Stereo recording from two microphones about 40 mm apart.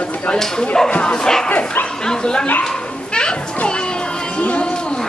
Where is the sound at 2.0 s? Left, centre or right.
Left.